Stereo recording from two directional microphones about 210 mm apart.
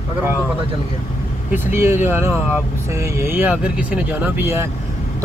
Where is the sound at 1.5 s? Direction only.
10° right (ahead or behind).